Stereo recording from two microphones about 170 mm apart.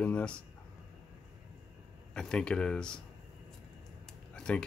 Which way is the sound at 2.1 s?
5° left (ahead or behind).